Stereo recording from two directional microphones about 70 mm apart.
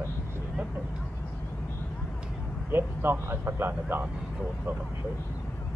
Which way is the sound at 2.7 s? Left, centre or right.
Right.